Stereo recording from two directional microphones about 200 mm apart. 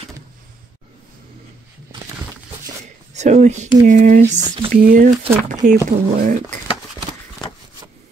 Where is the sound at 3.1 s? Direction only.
35° right (ahead or behind).